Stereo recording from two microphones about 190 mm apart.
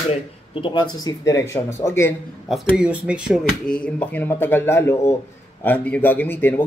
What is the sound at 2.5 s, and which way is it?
A man's voice, 5° right (ahead or behind).